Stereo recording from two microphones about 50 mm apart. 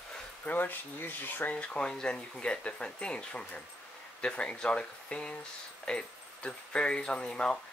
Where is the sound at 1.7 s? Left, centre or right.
Centre.